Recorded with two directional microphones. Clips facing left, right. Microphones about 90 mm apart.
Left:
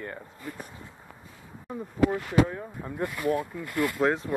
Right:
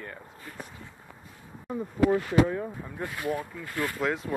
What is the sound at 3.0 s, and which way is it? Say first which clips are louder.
Speech: left 4 dB; centre (ahead or behind).